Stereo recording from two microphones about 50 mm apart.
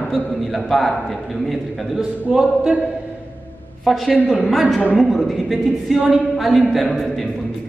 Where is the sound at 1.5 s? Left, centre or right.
Centre.